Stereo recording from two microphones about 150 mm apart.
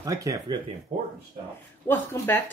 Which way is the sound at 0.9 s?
50° right (ahead or behind).